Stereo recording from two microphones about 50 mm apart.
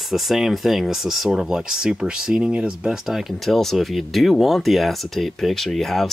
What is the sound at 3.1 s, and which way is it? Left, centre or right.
Speech, centre.